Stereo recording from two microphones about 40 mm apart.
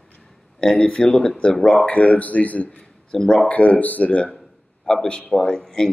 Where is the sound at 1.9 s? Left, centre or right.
Left.